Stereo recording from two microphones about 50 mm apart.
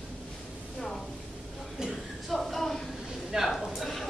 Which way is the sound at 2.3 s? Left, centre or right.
Centre.